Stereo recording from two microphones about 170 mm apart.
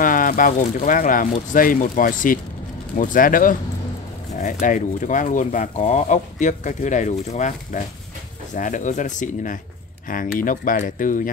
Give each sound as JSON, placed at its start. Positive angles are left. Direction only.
{"t": 0.0, "sound": "speech", "side_deg": 55}